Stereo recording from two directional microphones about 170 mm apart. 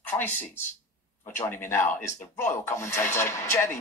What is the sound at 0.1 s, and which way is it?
Speech, 10° left (ahead or behind).